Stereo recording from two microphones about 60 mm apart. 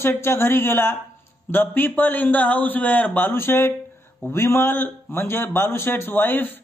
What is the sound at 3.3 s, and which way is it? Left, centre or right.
A man's voice, left.